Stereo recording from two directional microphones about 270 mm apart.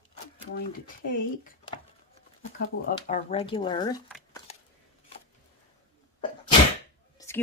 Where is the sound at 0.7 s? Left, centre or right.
Left.